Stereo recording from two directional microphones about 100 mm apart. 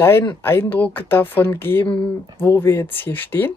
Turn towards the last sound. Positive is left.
turn(degrees=20)  # may be behind; listen again after turning